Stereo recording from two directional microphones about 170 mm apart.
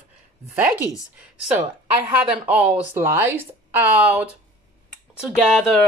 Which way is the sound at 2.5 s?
10° right (ahead or behind).